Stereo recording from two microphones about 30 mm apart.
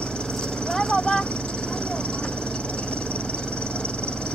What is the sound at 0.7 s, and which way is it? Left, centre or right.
Vehicle, left.